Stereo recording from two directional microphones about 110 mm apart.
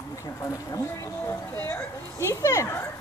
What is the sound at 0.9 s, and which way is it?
Speech, 25° left (ahead or behind).